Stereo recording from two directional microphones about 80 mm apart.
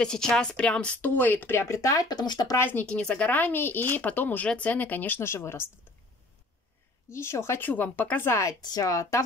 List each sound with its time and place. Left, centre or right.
0.0 s a woman's voice: centre
1.1 s speech: left
2.0 s speech: left
2.5 s speech: left
2.9 s speech: centre; by 5.7 s left
7.1 s speech: left
8.5 s speech: left
8.8 s speech: left